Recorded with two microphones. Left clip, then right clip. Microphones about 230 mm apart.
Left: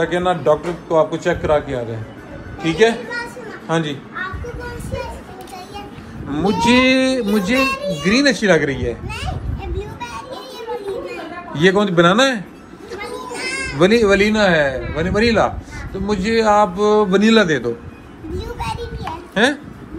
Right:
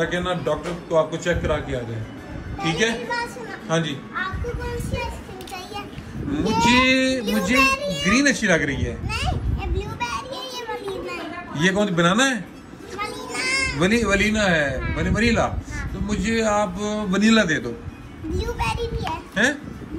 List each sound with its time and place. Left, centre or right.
0.0 s a man's voice: centre
2.6 s a man's voice: centre
6.3 s speech: centre
9.8 s child singing: centre
11.5 s a man's voice: centre
13.0 s children playing: centre
13.7 s a man's voice: centre
18.4 s children playing: centre